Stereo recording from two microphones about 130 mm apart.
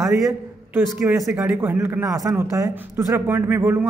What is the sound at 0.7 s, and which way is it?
A woman's voice, 15° right (ahead or behind).